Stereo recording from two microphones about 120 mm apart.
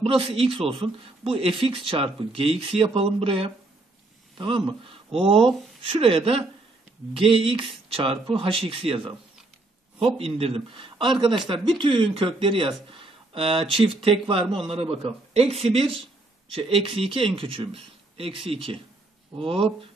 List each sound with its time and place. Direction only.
0.0 s speech: 50° right (ahead or behind)